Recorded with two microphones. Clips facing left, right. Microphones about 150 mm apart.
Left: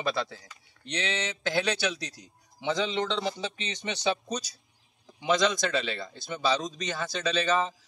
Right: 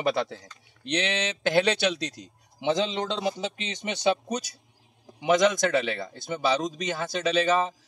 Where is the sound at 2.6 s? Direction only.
20° right (ahead or behind).